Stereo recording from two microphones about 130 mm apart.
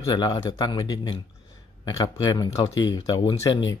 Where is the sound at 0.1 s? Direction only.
35° left (ahead or behind).